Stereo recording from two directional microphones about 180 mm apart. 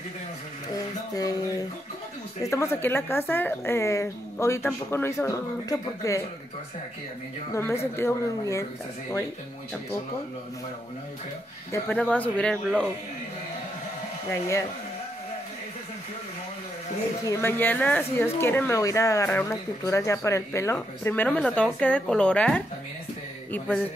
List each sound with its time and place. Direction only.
1.1 s a sound: 20° left (ahead or behind)
2.4 s speech: 15° left (ahead or behind)
7.5 s speech: 15° left (ahead or behind)
11.7 s speech: 10° left (ahead or behind)
17.3 s speech: 10° left (ahead or behind)